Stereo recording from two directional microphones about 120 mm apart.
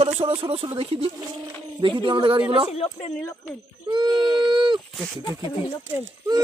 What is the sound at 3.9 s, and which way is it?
Baby cry, 35° right (ahead or behind).